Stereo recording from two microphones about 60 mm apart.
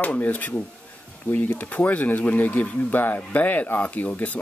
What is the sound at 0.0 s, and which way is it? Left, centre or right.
Speech, left.